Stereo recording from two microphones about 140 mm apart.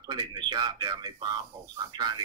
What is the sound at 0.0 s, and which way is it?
Speech, 30° right (ahead or behind).